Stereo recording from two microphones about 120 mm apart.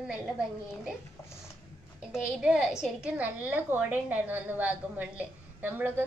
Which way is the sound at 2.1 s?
5° right (ahead or behind).